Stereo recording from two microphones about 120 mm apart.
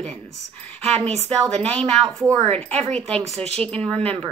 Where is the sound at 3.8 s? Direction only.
10° left (ahead or behind).